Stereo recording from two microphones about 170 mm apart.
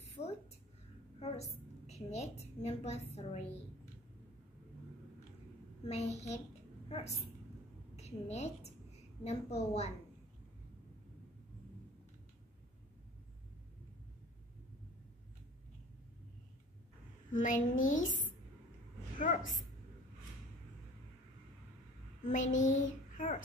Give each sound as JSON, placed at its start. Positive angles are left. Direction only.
{"t": 0.2, "sound": "a sound", "side_deg": 45}
{"t": 1.2, "sound": "a woman's voice", "side_deg": 40}
{"t": 5.9, "sound": "a woman's voice", "side_deg": 40}
{"t": 17.3, "sound": "a child's voice", "side_deg": 50}
{"t": 19.1, "sound": "a child's voice", "side_deg": 50}
{"t": 22.2, "sound": "a child's voice", "side_deg": 50}